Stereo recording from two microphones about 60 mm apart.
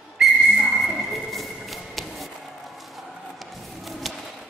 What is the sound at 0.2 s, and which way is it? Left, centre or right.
Whistle, centre.